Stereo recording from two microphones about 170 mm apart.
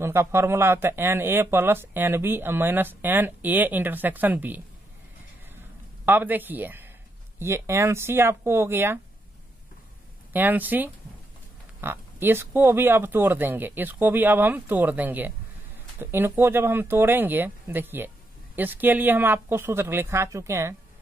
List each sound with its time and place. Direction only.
0.0 s speech: 15° right (ahead or behind)
6.0 s speech: 10° right (ahead or behind)
10.3 s speech: 10° right (ahead or behind)